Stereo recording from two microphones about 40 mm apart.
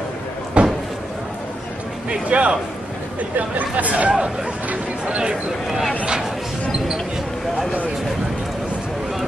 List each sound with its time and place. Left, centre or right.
0.6 s a sound: right
2.0 s speech: right
5.0 s speech: right